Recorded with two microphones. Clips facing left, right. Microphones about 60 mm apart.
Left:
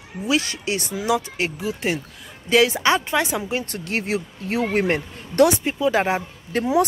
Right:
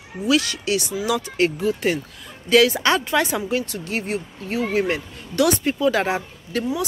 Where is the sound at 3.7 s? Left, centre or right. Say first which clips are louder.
Left 1 dB; left.